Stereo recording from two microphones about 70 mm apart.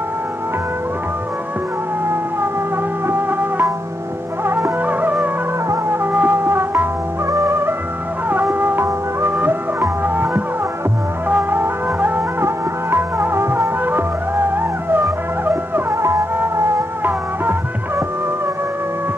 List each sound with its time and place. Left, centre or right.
3.1 s music: right
17.0 s music: right